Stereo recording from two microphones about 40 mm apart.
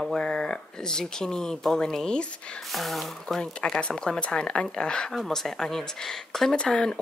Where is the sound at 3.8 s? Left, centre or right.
Left.